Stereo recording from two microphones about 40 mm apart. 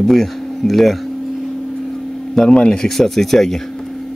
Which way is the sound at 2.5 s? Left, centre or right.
Centre.